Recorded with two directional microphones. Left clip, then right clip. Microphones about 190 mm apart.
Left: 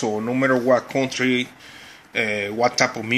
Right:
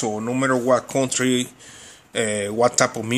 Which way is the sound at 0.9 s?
25° right (ahead or behind).